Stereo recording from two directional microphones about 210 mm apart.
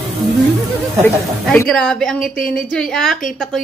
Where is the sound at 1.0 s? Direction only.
5° left (ahead or behind).